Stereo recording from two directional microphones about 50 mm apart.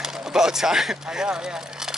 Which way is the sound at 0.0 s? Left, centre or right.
Centre.